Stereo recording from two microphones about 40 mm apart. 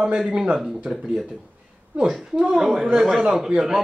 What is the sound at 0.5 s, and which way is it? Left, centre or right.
Speech, centre.